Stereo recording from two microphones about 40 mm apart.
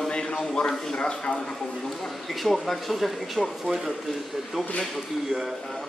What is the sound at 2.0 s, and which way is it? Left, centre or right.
Speech, centre.